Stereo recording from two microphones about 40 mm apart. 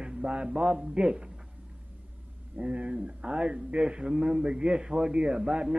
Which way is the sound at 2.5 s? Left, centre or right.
Right.